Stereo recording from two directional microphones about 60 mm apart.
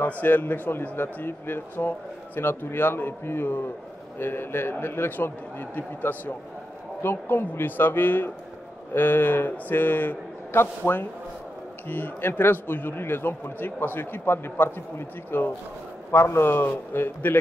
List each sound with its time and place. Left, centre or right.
0.0 s a man's voice: left